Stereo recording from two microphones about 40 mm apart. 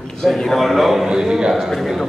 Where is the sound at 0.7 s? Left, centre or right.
Centre.